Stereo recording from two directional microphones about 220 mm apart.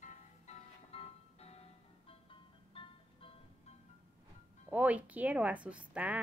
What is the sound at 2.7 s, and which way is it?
Music, 25° left (ahead or behind).